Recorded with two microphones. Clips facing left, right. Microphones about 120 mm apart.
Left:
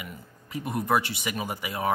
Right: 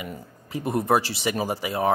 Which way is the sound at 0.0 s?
30° right (ahead or behind).